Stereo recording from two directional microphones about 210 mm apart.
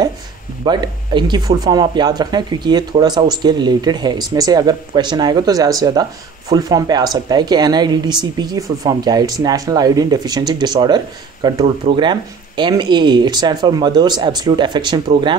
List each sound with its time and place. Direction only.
0.7 s speech: 20° right (ahead or behind)